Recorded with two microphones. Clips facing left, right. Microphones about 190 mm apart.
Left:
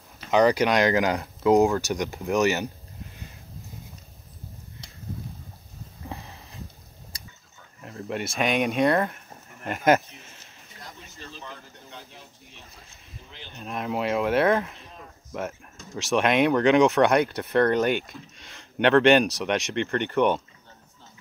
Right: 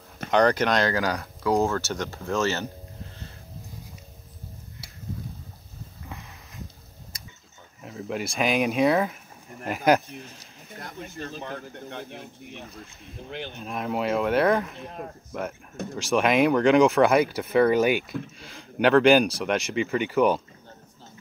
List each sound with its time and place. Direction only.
0.3 s speech: 5° left (ahead or behind)
6.0 s a sound: 30° left (ahead or behind)
7.8 s speech: centre (ahead or behind)
10.7 s speech: 55° right (ahead or behind)
13.6 s speech: centre (ahead or behind)
14.8 s speech: 60° right (ahead or behind)
15.3 s speech: centre (ahead or behind)